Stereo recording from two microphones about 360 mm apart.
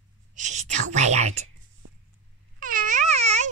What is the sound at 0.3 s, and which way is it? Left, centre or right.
Whispering, centre.